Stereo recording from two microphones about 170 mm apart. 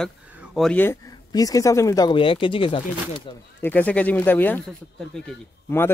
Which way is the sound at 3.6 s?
10° left (ahead or behind).